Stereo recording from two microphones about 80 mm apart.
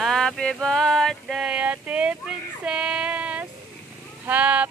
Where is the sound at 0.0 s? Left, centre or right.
Centre.